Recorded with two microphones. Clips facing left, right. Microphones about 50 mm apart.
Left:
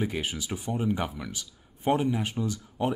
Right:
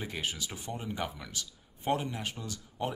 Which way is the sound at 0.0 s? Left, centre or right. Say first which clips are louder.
Left 6 dB; centre.